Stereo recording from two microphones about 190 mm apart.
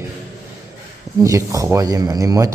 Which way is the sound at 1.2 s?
15° right (ahead or behind).